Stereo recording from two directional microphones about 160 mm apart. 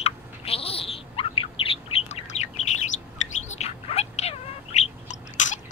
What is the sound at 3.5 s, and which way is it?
Cat, 40° left (ahead or behind).